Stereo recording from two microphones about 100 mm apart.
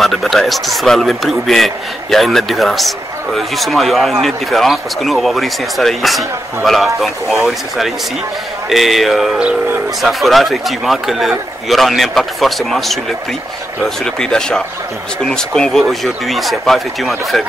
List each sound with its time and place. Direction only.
0.0 s speech: centre (ahead or behind)